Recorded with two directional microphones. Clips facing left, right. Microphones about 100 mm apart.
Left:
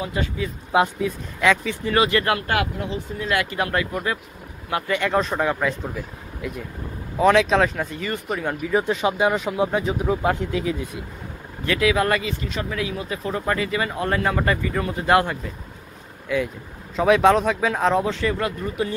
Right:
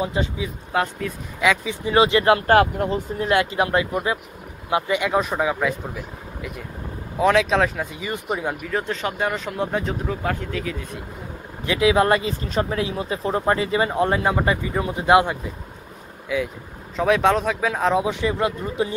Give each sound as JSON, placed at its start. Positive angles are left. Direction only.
{"t": 0.0, "sound": "speech", "side_deg": -25}
{"t": 0.7, "sound": "speech", "side_deg": 15}
{"t": 1.4, "sound": "speech", "side_deg": -10}
{"t": 2.4, "sound": "speech", "side_deg": -35}
{"t": 3.3, "sound": "speech", "side_deg": -25}
{"t": 8.6, "sound": "speech", "side_deg": 10}
{"t": 10.0, "sound": "speech", "side_deg": 20}
{"t": 11.6, "sound": "speech", "side_deg": -20}
{"t": 16.3, "sound": "speech", "side_deg": -5}
{"t": 18.0, "sound": "speech", "side_deg": -15}